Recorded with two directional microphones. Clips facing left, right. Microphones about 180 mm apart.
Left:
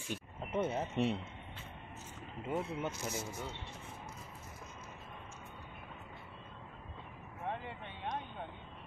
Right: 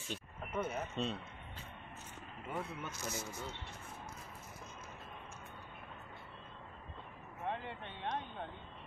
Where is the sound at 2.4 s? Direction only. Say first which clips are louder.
Left 6 dB; 25° left (ahead or behind).